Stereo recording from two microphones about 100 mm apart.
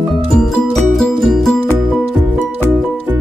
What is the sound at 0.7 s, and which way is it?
Music, centre (ahead or behind).